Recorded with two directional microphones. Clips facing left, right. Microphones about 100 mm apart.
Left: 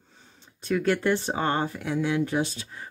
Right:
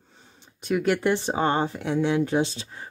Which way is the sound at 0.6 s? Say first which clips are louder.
Right 1 dB; 15° right (ahead or behind).